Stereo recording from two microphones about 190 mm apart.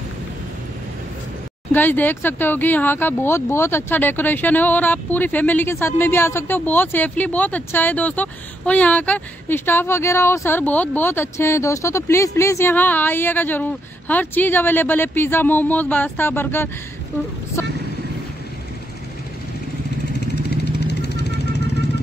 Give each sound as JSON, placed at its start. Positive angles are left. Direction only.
{"t": 1.7, "sound": "speech", "side_deg": 10}
{"t": 17.6, "sound": "vehicle", "side_deg": 10}
{"t": 20.1, "sound": "vehicle", "side_deg": 60}